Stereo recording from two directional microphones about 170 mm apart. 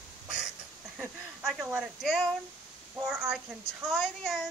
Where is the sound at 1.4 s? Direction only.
Centre (ahead or behind).